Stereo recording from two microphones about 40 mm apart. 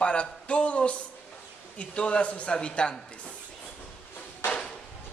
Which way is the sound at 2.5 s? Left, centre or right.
Left.